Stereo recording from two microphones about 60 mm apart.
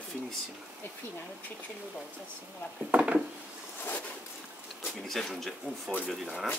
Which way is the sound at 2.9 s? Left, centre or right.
Centre.